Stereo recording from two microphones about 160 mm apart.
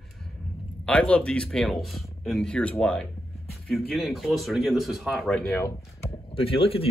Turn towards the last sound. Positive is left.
turn(degrees=35)  # may be behind; listen again after turning